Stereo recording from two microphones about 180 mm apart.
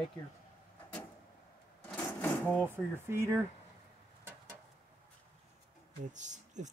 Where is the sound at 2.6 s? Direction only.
10° right (ahead or behind).